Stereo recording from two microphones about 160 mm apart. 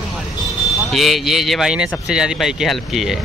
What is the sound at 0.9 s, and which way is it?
Speech, centre (ahead or behind).